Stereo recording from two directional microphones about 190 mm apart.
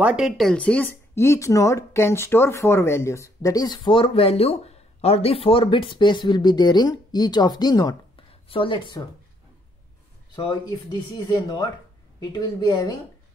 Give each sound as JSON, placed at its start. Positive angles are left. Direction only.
{"t": 0.0, "sound": "speech", "side_deg": -5}
{"t": 10.3, "sound": "speech", "side_deg": 20}